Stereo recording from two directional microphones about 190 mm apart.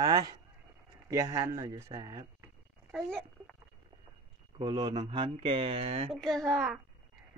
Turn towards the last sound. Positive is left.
turn(degrees=0)  # may be behind; listen again after turning